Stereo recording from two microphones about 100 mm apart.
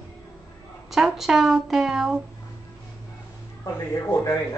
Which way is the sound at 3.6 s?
30° left (ahead or behind).